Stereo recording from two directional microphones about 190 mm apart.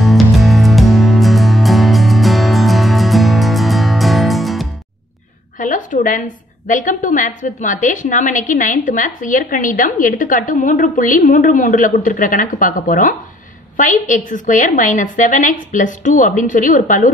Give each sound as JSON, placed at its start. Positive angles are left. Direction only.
{"t": 0.0, "sound": "music", "side_deg": 0}
{"t": 5.6, "sound": "a woman's voice", "side_deg": 45}